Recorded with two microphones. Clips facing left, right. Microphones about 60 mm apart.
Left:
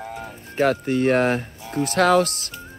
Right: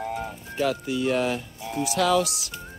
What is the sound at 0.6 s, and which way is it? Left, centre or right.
Speech, left.